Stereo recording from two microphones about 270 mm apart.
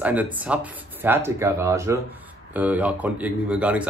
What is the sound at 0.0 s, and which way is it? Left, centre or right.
A man's voice, centre.